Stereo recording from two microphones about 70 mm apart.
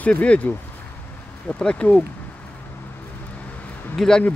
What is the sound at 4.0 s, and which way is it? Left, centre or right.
Speech, centre.